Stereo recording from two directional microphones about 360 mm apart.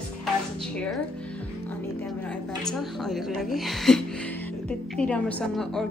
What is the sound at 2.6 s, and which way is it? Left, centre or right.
A woman's voice, centre.